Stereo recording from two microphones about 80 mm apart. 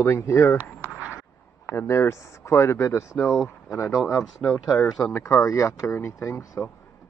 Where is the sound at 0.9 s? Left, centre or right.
Centre.